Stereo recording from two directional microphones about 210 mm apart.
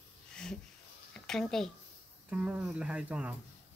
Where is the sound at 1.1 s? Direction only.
5° left (ahead or behind).